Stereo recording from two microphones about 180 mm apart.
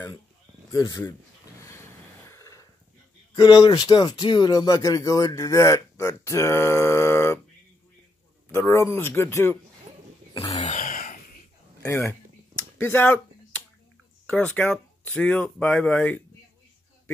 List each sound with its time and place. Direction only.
0.7 s speech: 25° left (ahead or behind)
2.2 s a sound: 15° left (ahead or behind)
3.3 s speech: 25° left (ahead or behind)
8.5 s speech: 15° left (ahead or behind)
10.3 s a sound: 25° left (ahead or behind)
10.6 s throat clearing: 45° left (ahead or behind)
11.8 s speech: 15° left (ahead or behind)
12.7 s a sound: 10° left (ahead or behind)
14.2 s speech: 5° left (ahead or behind)